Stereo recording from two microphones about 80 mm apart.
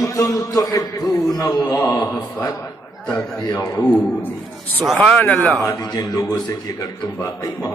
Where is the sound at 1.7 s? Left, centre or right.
Left.